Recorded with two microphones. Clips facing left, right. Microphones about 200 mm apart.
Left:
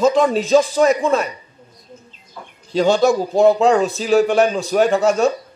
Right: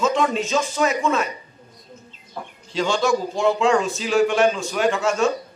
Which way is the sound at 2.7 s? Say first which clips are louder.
Left 6 dB; 40° left (ahead or behind).